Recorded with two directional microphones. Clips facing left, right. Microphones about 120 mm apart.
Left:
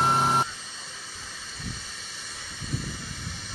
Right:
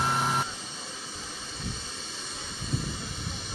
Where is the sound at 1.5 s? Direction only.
25° right (ahead or behind).